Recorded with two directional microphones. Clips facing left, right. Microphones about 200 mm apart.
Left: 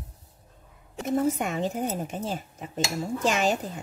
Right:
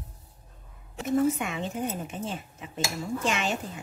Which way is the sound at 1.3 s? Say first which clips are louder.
Left 4 dB; 40° left (ahead or behind).